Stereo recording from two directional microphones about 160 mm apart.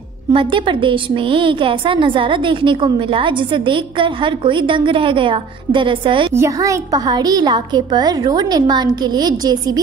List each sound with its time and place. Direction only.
0.3 s a woman's voice: 30° right (ahead or behind)
6.3 s a woman's voice: 20° right (ahead or behind)